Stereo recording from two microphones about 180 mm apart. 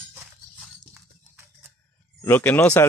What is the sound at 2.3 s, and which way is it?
Speech, 10° left (ahead or behind).